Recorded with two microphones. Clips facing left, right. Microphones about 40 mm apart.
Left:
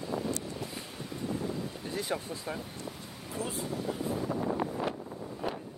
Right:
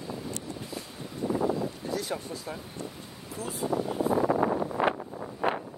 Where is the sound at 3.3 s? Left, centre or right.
Left.